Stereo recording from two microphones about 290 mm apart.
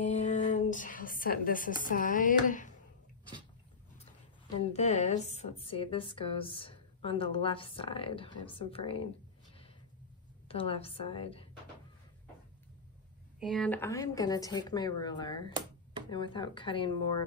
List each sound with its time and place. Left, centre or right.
0.0 s speech: left
4.6 s a woman's voice: left
10.5 s a woman's voice: centre
13.4 s a woman's voice: centre